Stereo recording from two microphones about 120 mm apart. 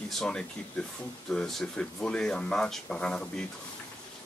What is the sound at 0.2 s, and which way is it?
Speech, 10° left (ahead or behind).